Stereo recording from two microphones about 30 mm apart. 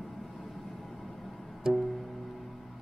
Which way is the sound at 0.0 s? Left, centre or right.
Centre.